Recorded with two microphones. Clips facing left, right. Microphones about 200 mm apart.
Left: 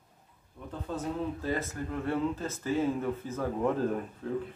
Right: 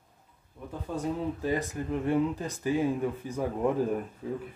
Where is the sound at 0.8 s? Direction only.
10° right (ahead or behind).